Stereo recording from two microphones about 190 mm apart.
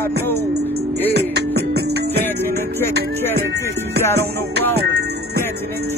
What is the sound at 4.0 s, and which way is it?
Music, 15° left (ahead or behind).